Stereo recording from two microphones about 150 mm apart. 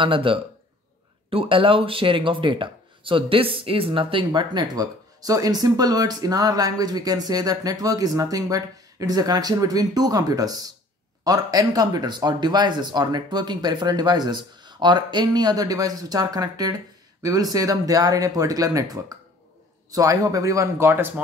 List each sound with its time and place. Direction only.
0.0 s speech: 35° right (ahead or behind); by 21.1 s 15° right (ahead or behind)